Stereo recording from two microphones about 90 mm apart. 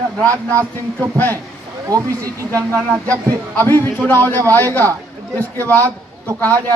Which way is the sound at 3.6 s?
25° left (ahead or behind).